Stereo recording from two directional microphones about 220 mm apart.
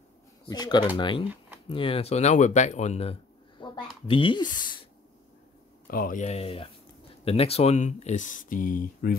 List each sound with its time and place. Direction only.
0.5 s speech: 20° left (ahead or behind)
5.9 s speech: 40° left (ahead or behind)